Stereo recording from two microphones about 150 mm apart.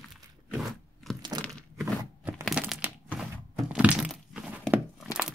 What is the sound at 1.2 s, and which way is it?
Crack, 30° right (ahead or behind).